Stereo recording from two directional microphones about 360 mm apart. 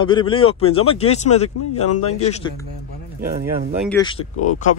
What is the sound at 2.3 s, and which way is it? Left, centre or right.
Speech, centre.